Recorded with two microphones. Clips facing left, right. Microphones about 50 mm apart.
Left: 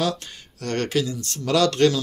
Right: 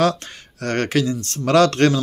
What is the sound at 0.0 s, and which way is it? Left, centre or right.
A man's voice, right.